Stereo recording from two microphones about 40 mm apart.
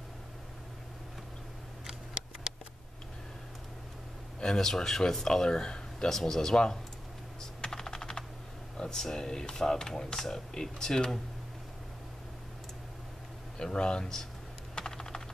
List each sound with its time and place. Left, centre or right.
4.4 s speech: centre
7.6 s typing: centre
8.7 s speech: centre
13.6 s speech: left
14.8 s typing: centre